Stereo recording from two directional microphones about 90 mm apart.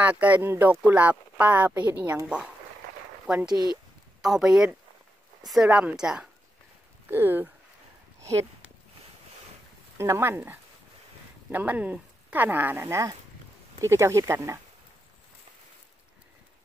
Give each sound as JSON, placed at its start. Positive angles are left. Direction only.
{"t": 0.0, "sound": "speech", "side_deg": -15}
{"t": 7.1, "sound": "speech", "side_deg": -25}
{"t": 8.2, "sound": "a sound", "side_deg": -35}
{"t": 9.9, "sound": "speech", "side_deg": -30}